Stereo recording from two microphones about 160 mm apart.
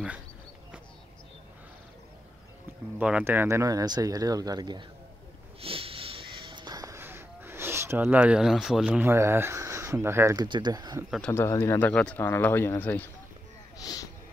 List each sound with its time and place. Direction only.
3.0 s speech: 10° right (ahead or behind); by 4.8 s 25° right (ahead or behind)
5.6 s a sound: 35° right (ahead or behind)
11.1 s speech: 5° left (ahead or behind)
11.4 s speech: 15° left (ahead or behind)
11.9 s speech: 5° left (ahead or behind)
13.7 s a sound: 25° left (ahead or behind)